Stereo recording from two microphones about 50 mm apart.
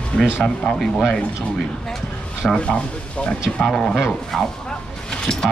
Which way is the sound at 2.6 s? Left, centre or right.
Left.